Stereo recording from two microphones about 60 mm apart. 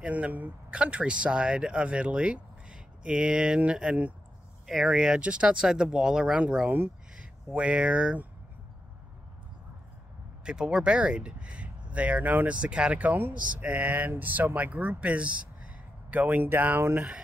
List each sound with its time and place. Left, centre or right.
0.0 s speech: right
4.6 s speech: centre
4.9 s speech: centre
10.4 s speech: centre; by 17.0 s right